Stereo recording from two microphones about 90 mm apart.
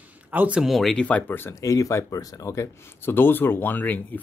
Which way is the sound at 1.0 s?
15° left (ahead or behind).